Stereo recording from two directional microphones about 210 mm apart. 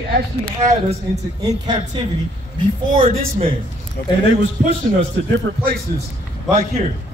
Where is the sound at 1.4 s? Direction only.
20° right (ahead or behind).